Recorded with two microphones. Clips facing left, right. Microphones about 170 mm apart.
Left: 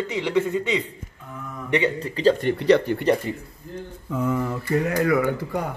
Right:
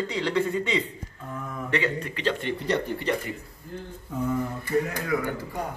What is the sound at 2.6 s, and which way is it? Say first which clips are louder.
Speech: left 9 dB; 70° left (ahead or behind).